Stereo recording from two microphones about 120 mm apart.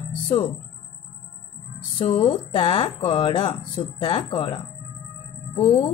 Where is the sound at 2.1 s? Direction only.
45° left (ahead or behind).